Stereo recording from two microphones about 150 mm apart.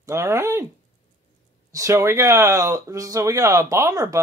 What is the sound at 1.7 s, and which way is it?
Speech, 20° right (ahead or behind).